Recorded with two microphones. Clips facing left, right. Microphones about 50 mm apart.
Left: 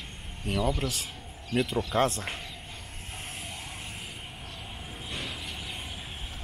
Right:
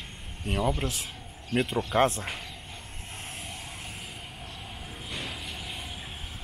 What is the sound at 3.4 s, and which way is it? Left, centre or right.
Music, centre.